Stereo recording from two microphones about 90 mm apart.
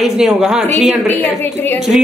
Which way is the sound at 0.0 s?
5° right (ahead or behind).